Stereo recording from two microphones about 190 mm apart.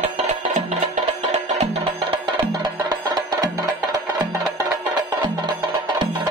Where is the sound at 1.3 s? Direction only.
40° right (ahead or behind).